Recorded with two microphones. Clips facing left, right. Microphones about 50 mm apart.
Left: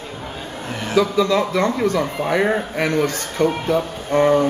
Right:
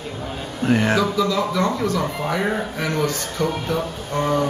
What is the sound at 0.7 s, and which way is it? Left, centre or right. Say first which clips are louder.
Speech: right 1 dB; right.